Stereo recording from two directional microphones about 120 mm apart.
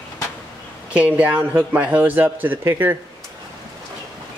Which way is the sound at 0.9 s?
10° right (ahead or behind).